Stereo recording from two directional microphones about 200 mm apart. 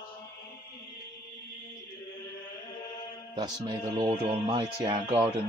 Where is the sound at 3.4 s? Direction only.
20° right (ahead or behind).